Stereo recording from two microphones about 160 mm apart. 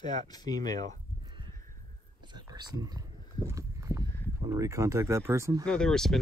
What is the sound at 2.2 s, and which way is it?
Whispering, 30° right (ahead or behind).